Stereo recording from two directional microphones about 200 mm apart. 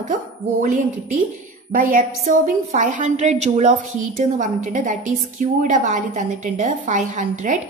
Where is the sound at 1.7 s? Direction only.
45° right (ahead or behind).